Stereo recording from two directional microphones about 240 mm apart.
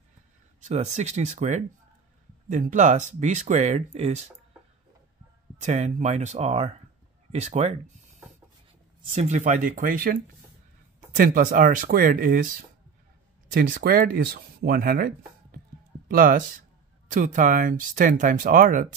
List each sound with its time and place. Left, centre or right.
0.7 s speech: right
5.6 s speech: right
9.1 s speech: right